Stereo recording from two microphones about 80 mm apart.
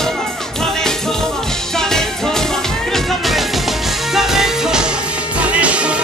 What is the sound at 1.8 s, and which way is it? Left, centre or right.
Music, centre.